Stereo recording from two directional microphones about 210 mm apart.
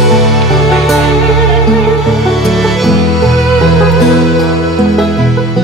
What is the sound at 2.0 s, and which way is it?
Music, centre (ahead or behind).